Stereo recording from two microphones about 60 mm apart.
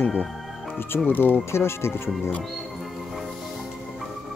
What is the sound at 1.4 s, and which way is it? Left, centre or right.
Speech, left.